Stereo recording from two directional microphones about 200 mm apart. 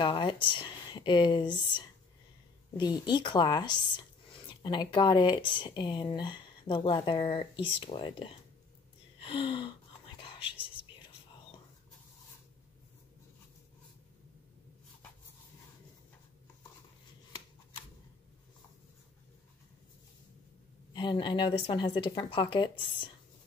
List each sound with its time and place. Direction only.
0.0 s speech: 25° left (ahead or behind)
9.2 s whispering: 25° left (ahead or behind)
20.9 s speech: 25° left (ahead or behind)